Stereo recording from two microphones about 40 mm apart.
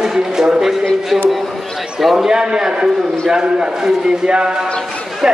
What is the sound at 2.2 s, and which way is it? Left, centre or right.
A man's voice, centre.